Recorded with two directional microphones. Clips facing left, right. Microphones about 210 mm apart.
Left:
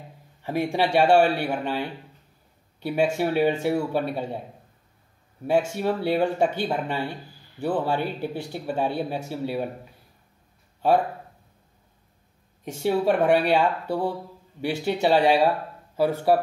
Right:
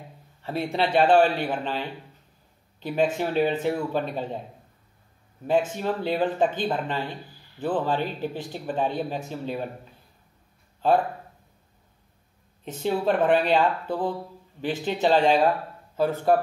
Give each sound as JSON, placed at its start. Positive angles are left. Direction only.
{"t": 0.4, "sound": "a man's voice", "side_deg": 15}
{"t": 3.0, "sound": "speech", "side_deg": 10}
{"t": 5.8, "sound": "speech", "side_deg": 10}
{"t": 12.6, "sound": "speech", "side_deg": 10}